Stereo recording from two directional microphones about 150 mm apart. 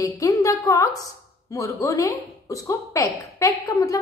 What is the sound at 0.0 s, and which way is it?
A woman's voice, 20° left (ahead or behind).